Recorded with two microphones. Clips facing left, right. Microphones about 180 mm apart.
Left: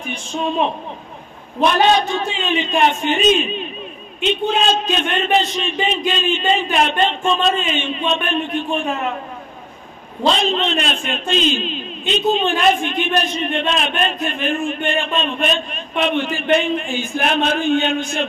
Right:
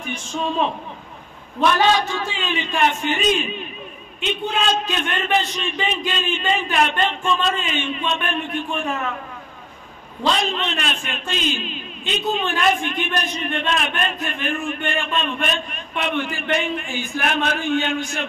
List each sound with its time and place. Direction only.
0.1 s a man's voice: 20° left (ahead or behind)
10.2 s a man's voice: 25° left (ahead or behind)